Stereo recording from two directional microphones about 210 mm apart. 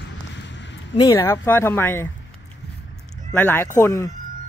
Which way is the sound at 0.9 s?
15° left (ahead or behind).